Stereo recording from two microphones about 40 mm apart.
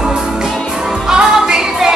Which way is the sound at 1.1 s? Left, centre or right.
Centre.